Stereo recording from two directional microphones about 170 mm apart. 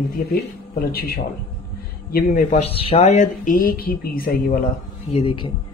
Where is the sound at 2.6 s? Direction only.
35° left (ahead or behind); by 4.6 s 60° left (ahead or behind).